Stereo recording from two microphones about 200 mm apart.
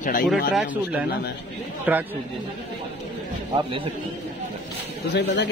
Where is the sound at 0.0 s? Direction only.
45° left (ahead or behind).